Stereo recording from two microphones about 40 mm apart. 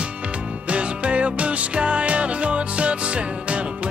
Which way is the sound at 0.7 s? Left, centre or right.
Right.